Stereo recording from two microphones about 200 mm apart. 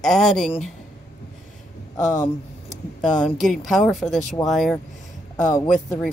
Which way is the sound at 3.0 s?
Centre (ahead or behind).